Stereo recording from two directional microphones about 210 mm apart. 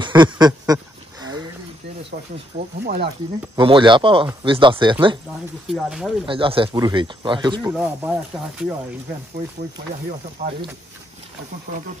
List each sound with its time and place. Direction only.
0.0 s a sound: 20° right (ahead or behind)
2.8 s speech: 50° right (ahead or behind)
3.5 s speech: 25° right (ahead or behind)
5.7 s speech: centre (ahead or behind)
6.2 s speech: 25° right (ahead or behind)
7.7 s speech: 5° right (ahead or behind)
10.4 s speech: 35° right (ahead or behind)